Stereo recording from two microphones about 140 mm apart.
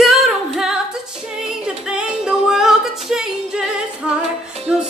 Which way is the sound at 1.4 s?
5° right (ahead or behind).